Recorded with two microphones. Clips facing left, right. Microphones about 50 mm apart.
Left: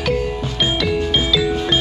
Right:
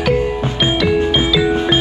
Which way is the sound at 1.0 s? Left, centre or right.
Centre.